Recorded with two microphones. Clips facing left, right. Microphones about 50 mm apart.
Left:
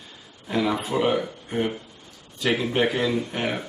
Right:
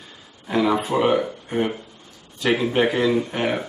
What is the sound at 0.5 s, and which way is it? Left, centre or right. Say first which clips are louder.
Speech: right 4 dB; centre.